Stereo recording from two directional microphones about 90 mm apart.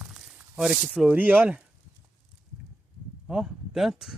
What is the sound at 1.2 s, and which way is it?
Speech, 20° right (ahead or behind).